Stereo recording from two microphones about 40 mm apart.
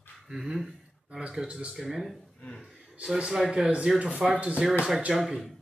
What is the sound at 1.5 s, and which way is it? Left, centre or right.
Speech, right.